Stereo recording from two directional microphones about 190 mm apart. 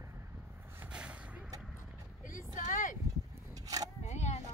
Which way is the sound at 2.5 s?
45° left (ahead or behind).